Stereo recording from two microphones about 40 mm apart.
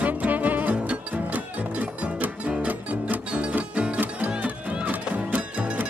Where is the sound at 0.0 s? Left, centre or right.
Right.